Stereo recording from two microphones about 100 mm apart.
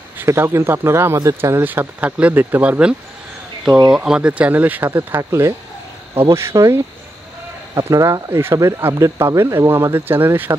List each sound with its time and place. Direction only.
0.2 s speech: 25° right (ahead or behind)